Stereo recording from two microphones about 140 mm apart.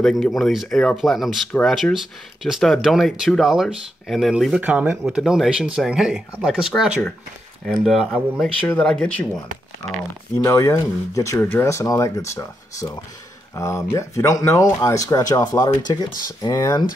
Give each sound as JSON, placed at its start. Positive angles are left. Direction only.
{"t": 0.0, "sound": "speech", "side_deg": 0}
{"t": 4.6, "sound": "speech", "side_deg": -10}
{"t": 10.4, "sound": "speech", "side_deg": 25}